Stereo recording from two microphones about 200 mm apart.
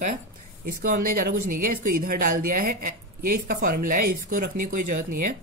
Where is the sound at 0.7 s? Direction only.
45° right (ahead or behind).